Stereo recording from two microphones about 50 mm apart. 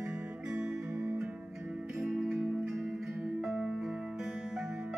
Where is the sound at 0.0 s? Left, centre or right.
Right.